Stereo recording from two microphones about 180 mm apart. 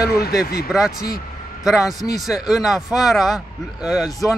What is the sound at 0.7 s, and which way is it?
Speech, 5° right (ahead or behind).